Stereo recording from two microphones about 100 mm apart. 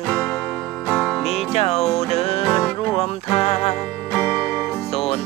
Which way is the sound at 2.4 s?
5° left (ahead or behind).